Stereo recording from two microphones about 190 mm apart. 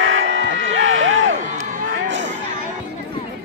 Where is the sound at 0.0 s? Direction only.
85° right.